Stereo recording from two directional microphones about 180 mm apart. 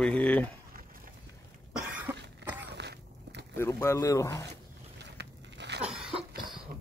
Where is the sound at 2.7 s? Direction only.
70° right (ahead or behind).